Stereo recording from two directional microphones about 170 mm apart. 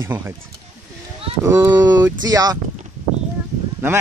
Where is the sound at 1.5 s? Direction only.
15° right (ahead or behind).